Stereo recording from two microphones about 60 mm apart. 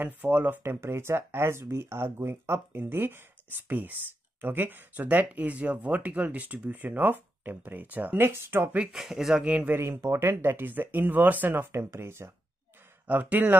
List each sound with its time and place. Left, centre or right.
0.0 s speech: right
0.7 s speech: right
8.9 s speech: centre
9.4 s speech: right
9.7 s speech: right
10.4 s speech: right
11.7 s speech: right
13.0 s speech: right